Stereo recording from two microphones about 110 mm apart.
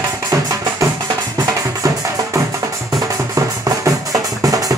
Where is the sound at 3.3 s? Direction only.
30° right (ahead or behind).